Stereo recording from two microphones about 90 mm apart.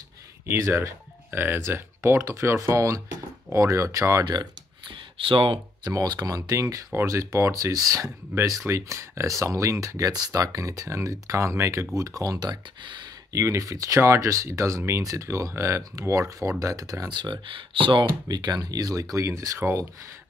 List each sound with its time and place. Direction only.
0.5 s speech: 30° right (ahead or behind)
4.2 s a sound: 55° right (ahead or behind)
5.2 s speech: 80° right
5.9 s speech: 45° right (ahead or behind)
13.3 s speech: 35° right (ahead or behind)
17.1 s speech: 60° right (ahead or behind)
18.3 s speech: 50° right (ahead or behind); by 19.9 s 25° right (ahead or behind)